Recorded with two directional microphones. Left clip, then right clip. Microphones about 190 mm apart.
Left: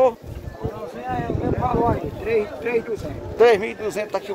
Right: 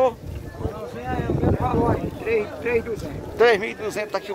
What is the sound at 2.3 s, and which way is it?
Speech, 55° left (ahead or behind).